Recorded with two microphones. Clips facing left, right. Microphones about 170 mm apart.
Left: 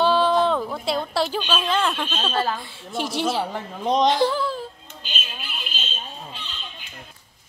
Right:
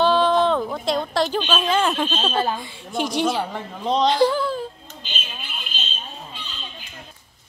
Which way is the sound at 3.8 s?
15° left (ahead or behind).